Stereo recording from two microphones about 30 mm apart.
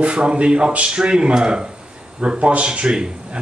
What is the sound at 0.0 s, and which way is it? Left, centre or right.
Speech, right.